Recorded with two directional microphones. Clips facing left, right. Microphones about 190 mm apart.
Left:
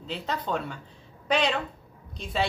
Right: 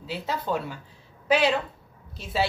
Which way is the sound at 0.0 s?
5° right (ahead or behind).